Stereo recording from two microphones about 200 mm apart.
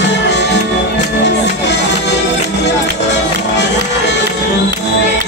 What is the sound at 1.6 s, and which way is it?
Music, 60° left (ahead or behind).